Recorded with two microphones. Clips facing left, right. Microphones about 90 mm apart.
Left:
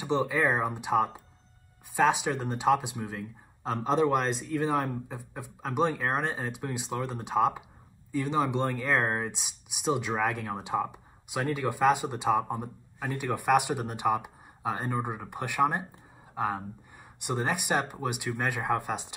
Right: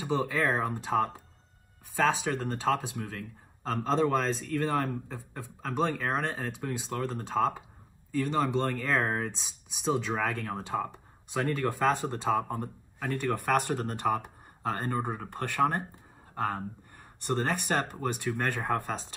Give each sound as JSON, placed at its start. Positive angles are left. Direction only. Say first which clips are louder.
{"t": 0.0, "sound": "speech", "louder": "left 2 dB", "side_deg": 15}